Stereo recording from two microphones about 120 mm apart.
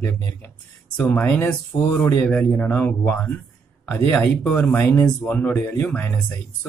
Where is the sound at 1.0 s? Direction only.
10° left (ahead or behind).